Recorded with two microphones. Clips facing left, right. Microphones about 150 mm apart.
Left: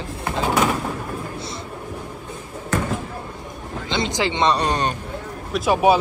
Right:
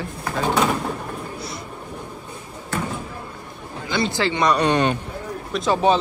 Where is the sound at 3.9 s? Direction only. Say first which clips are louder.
Right 1 dB; 20° left (ahead or behind); by 4.9 s 35° left (ahead or behind).